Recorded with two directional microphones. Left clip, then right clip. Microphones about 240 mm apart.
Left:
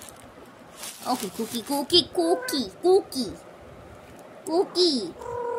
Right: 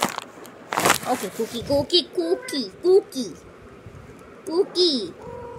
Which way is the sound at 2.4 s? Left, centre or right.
Left.